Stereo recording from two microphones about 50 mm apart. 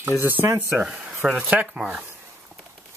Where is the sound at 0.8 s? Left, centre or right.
Right.